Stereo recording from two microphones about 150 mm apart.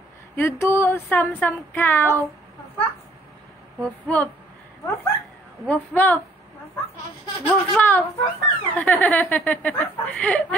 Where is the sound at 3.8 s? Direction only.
10° left (ahead or behind).